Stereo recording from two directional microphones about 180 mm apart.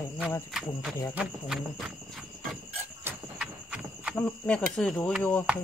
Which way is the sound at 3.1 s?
5° right (ahead or behind).